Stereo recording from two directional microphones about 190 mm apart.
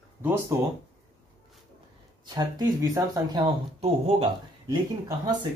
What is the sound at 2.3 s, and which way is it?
Speech, 20° right (ahead or behind).